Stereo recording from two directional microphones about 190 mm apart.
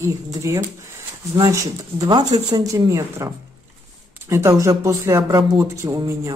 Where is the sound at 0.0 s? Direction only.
15° right (ahead or behind).